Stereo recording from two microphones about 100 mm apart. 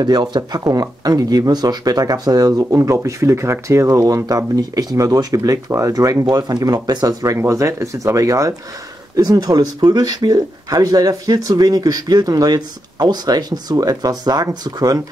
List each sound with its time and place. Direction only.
0.0 s speech: 50° right (ahead or behind)